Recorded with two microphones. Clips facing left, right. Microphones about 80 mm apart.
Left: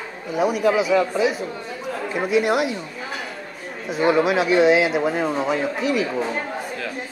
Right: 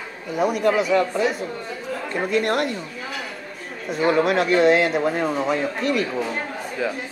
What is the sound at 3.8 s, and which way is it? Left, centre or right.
Speech, centre.